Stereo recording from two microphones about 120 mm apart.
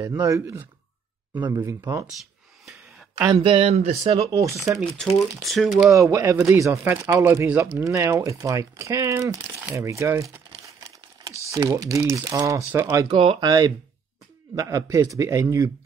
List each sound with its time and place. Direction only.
0.0 s speech: 25° right (ahead or behind)
3.3 s speech: 55° right (ahead or behind)
4.2 s speech: 30° right (ahead or behind)
4.9 s speech: centre (ahead or behind)
5.9 s speech: 25° right (ahead or behind)
7.4 s speech: 10° right (ahead or behind)
7.8 s speech: 25° right (ahead or behind)
11.2 s typing: 25° right (ahead or behind)
12.1 s speech: 30° right (ahead or behind)